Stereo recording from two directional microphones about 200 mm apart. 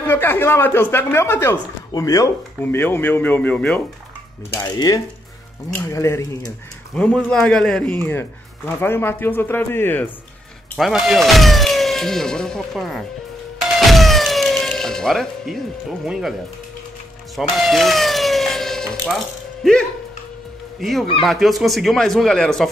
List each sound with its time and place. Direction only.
0.0 s a man's voice: 10° left (ahead or behind)
4.6 s a man's voice: 20° left (ahead or behind)
7.0 s a man's voice: 5° left (ahead or behind)
10.8 s speech: centre (ahead or behind)
13.7 s music: centre (ahead or behind)
16.1 s speech: centre (ahead or behind)
17.4 s siren: centre (ahead or behind)
20.8 s speech: centre (ahead or behind)